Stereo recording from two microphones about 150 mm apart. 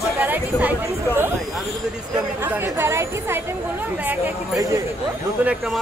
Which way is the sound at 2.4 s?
15° right (ahead or behind).